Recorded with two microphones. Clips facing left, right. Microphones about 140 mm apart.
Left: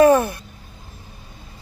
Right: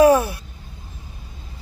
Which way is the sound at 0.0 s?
5° right (ahead or behind).